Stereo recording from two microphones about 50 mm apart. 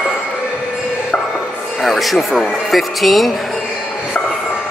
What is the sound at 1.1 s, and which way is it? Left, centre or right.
Music, left.